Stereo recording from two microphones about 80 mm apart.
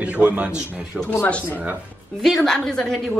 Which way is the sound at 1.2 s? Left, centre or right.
Left.